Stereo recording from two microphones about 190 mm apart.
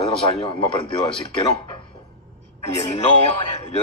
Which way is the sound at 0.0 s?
30° left (ahead or behind).